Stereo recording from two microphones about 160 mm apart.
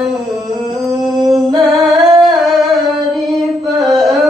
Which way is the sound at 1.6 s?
Centre (ahead or behind).